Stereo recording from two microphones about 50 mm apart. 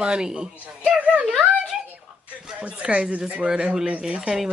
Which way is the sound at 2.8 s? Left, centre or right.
Right.